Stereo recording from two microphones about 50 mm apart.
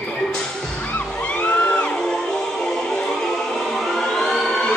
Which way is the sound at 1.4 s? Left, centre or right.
Left.